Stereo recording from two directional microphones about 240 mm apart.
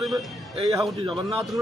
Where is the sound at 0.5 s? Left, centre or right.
Centre.